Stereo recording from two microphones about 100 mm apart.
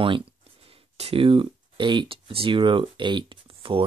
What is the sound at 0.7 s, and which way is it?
Speech, 80° right.